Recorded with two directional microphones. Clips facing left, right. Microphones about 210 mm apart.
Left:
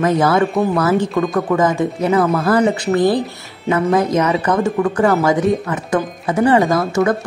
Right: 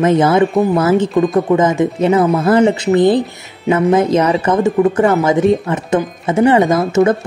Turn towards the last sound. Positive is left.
turn(degrees=-25)  # may be behind; listen again after turning